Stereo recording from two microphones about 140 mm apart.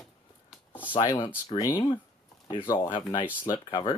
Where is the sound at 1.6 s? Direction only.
25° left (ahead or behind).